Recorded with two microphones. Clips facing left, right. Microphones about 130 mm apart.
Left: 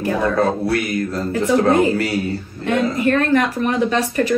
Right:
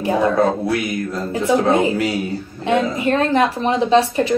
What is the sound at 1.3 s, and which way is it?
A woman's voice, 20° right (ahead or behind).